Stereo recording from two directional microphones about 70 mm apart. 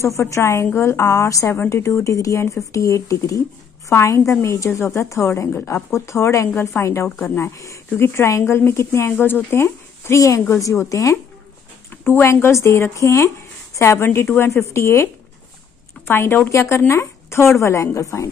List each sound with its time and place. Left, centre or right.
0.0 s speech: left
11.9 s speech: left
14.5 s speech: left
16.1 s speech: left